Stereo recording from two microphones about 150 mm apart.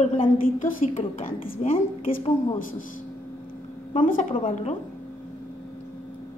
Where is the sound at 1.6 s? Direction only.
45° left (ahead or behind).